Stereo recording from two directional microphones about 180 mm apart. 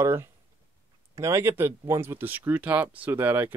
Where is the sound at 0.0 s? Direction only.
15° right (ahead or behind).